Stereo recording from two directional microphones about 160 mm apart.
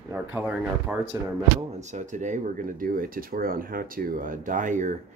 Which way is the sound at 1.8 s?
50° right (ahead or behind).